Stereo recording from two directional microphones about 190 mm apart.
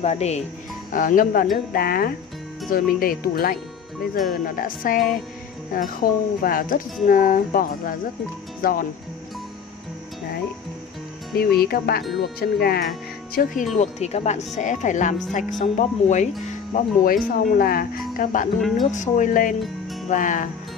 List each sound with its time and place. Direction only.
0.0 s speech: 35° left (ahead or behind)
0.9 s speech: 45° left (ahead or behind)
11.3 s speech: 55° left (ahead or behind)
13.7 s speech: 35° left (ahead or behind)